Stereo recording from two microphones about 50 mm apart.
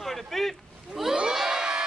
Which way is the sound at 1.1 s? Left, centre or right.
Centre.